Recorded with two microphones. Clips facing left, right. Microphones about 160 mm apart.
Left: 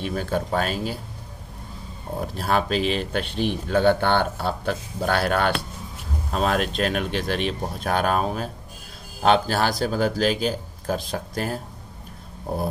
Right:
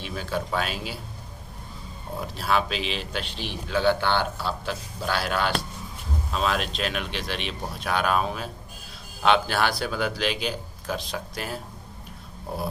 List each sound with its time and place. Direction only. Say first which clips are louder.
0.0 s a man's voice: left 4 dB; 50° left (ahead or behind)
2.1 s a man's voice: left 2 dB; 45° left (ahead or behind)